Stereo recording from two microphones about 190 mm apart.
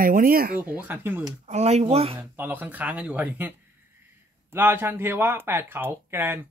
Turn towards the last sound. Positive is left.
turn(degrees=-10)  # may be behind; listen again after turning